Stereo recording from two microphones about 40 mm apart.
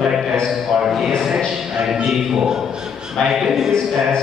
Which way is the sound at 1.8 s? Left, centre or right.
Centre.